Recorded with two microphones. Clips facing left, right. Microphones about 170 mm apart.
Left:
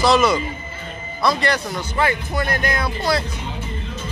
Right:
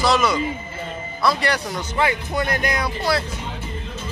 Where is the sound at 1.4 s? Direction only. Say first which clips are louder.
Left 1 dB; 10° right (ahead or behind).